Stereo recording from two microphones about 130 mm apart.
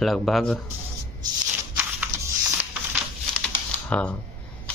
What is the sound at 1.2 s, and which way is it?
Shuffling cards, 30° right (ahead or behind).